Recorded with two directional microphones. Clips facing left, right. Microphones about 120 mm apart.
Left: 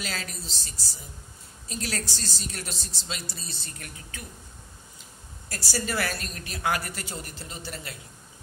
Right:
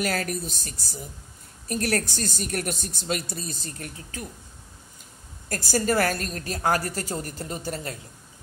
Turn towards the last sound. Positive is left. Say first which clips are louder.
# right 7 dB
turn(degrees=-40)  # may be behind; listen again after turning